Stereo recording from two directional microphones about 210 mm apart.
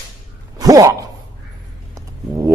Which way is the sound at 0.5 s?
15° right (ahead or behind).